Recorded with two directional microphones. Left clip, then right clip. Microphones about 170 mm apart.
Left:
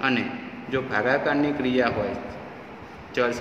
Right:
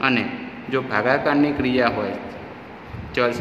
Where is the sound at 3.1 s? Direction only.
25° right (ahead or behind).